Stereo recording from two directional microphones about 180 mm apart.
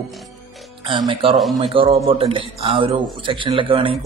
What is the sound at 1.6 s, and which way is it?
A man's voice, 30° right (ahead or behind).